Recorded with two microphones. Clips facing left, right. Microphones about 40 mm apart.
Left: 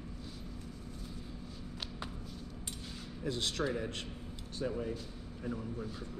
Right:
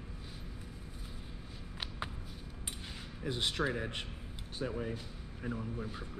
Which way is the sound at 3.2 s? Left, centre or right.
Right.